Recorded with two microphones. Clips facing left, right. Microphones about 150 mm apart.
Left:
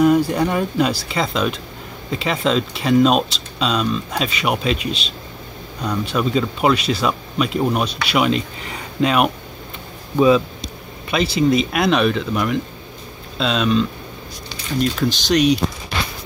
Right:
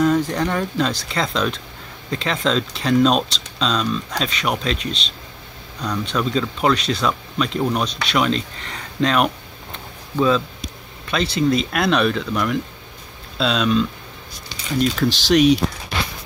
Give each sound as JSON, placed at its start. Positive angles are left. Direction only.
{"t": 0.0, "sound": "speech", "side_deg": 10}
{"t": 11.1, "sound": "speech", "side_deg": 5}